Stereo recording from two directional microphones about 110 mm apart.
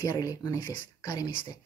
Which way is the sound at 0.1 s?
35° left (ahead or behind).